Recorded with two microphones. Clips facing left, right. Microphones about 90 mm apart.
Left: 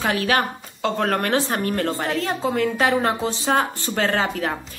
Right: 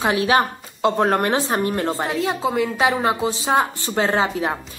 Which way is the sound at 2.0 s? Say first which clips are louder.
Right 1 dB; 10° right (ahead or behind).